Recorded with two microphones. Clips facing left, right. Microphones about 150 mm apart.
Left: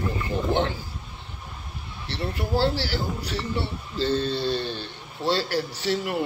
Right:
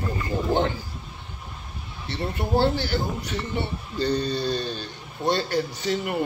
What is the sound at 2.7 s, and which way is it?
A man's voice, 20° right (ahead or behind).